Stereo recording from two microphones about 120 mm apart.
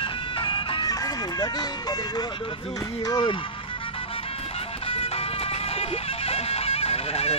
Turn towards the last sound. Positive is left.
turn(degrees=60)  # may be behind; listen again after turning